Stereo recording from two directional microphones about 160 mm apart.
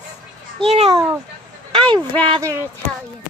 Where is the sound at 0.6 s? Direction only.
40° right (ahead or behind).